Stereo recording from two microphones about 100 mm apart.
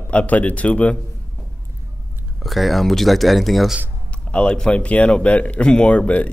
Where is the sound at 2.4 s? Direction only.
Centre (ahead or behind).